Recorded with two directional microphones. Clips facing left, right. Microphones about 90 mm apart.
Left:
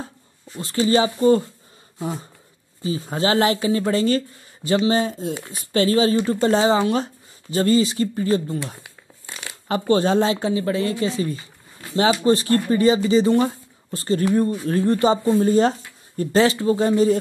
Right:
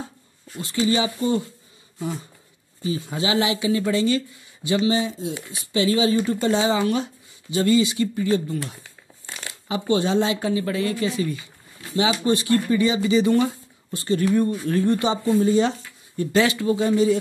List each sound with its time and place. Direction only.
0.6 s speech: 40° left (ahead or behind)
2.8 s speech: 35° left (ahead or behind)